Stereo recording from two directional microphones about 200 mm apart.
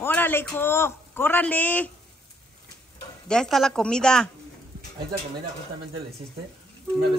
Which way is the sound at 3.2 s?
5° left (ahead or behind).